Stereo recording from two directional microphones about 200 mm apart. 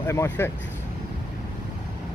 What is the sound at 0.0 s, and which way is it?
Speech, 15° left (ahead or behind).